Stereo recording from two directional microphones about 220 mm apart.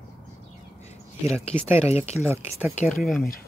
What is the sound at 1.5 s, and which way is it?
Speech, 10° right (ahead or behind).